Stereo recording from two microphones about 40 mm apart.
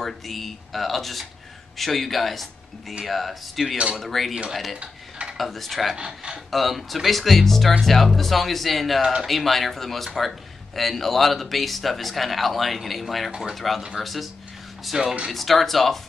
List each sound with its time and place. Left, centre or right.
0.0 s a man's voice: centre
5.9 s speech: right
6.5 s a man's voice: centre
9.0 s speech: centre
9.3 s a man's voice: centre
14.9 s speech: centre
15.3 s a man's voice: centre